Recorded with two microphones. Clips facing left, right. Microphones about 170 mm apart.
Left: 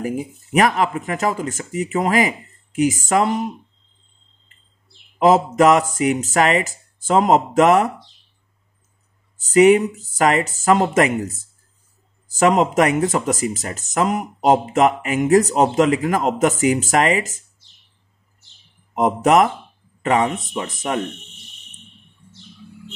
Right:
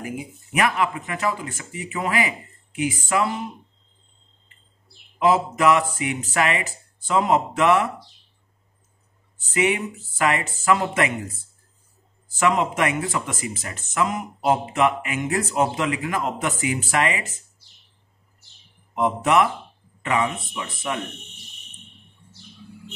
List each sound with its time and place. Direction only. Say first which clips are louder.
0.0 s speech: left 7 dB; 40° left (ahead or behind)
5.2 s speech: left 5 dB; 40° left (ahead or behind)
9.4 s speech: left 11 dB; 40° left (ahead or behind)
18.9 s speech: left 5 dB; 40° left (ahead or behind)